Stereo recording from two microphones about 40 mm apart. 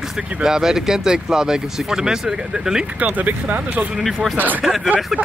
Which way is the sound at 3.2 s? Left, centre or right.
Right.